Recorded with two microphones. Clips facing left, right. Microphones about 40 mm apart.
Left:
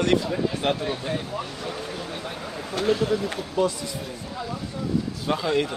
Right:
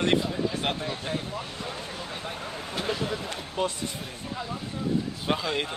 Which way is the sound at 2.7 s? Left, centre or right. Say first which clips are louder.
Left 7 dB; centre.